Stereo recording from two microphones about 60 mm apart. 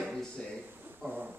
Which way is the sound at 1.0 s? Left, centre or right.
Right.